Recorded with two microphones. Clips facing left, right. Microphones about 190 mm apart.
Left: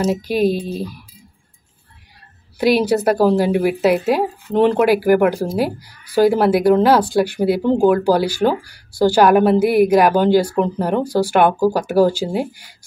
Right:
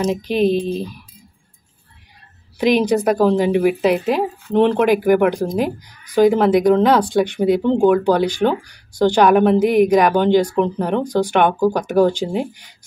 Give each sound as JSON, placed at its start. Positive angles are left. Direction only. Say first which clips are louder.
{"t": 0.0, "sound": "speech", "louder": "even", "side_deg": 10}
{"t": 2.6, "sound": "speech", "louder": "even", "side_deg": 5}